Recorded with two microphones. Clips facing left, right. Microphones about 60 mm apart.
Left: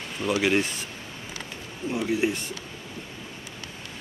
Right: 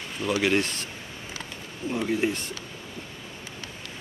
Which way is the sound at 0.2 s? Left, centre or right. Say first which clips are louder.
Left 1 dB; centre.